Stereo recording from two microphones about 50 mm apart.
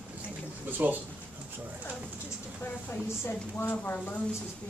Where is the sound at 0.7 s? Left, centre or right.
Right.